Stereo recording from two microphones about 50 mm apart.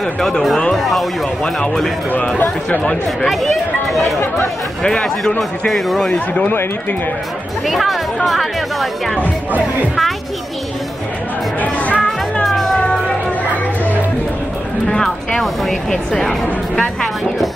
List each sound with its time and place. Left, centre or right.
0.0 s speech: centre
0.7 s a sound: centre
1.4 s speech: centre
2.0 s speech: left
2.8 s speech: centre
3.3 s speech: centre
6.1 s speech: left
7.6 s speech: centre
11.6 s music: left
15.0 s music: centre
15.9 s speech: centre